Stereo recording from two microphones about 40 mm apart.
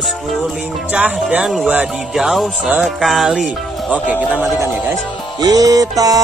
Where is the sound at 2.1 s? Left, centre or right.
Centre.